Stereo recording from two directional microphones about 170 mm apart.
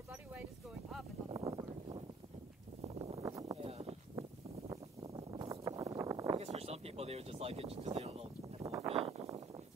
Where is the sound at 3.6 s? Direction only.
35° right (ahead or behind).